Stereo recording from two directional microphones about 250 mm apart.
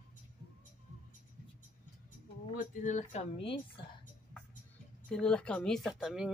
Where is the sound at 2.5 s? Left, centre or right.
Left.